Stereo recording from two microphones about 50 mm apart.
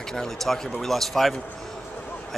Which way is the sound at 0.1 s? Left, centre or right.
Centre.